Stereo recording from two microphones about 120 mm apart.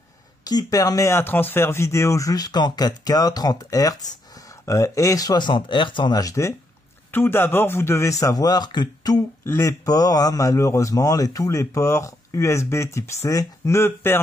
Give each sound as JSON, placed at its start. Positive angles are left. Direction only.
{"t": 0.4, "sound": "speech", "side_deg": 35}